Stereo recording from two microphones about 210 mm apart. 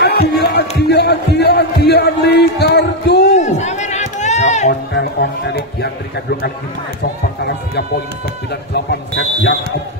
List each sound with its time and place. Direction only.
0.0 s music: 50° left (ahead or behind)
3.3 s a sound: 35° left (ahead or behind)
4.2 s run: 35° left (ahead or behind)
4.9 s music: 50° left (ahead or behind)
8.7 s fire alarm: 55° left (ahead or behind)